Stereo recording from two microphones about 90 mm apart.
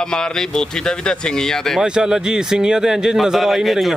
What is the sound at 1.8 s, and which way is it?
Speech, 10° right (ahead or behind).